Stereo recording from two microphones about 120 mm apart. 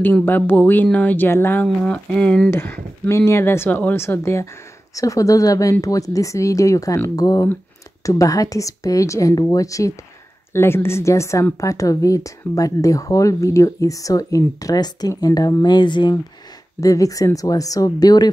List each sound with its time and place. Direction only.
0.0 s speech: 15° left (ahead or behind)
2.5 s speech: 20° left (ahead or behind); by 16.2 s 40° left (ahead or behind)
16.8 s speech: 30° left (ahead or behind)